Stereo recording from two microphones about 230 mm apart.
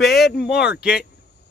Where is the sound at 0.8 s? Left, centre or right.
Centre.